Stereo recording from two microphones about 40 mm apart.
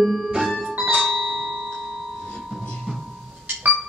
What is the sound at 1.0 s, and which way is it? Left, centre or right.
Bell, centre.